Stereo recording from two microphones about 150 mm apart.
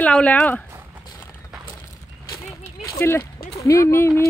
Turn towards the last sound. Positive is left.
turn(degrees=15)  # may be behind; listen again after turning